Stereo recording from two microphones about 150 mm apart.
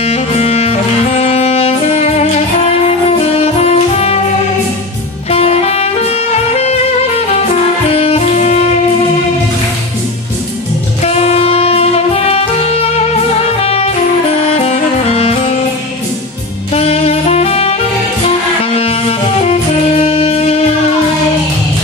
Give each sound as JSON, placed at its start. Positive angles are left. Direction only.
{"t": 0.0, "sound": "music", "side_deg": 45}
{"t": 3.1, "sound": "saxophone", "side_deg": 45}
{"t": 5.3, "sound": "music", "side_deg": 45}
{"t": 7.9, "sound": "music", "side_deg": 40}
{"t": 11.1, "sound": "music", "side_deg": 45}
{"t": 13.6, "sound": "music", "side_deg": 40}
{"t": 16.7, "sound": "saxophone", "side_deg": 45}
{"t": 18.8, "sound": "music", "side_deg": 40}